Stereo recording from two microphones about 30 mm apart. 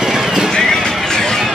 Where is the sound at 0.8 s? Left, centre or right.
Centre.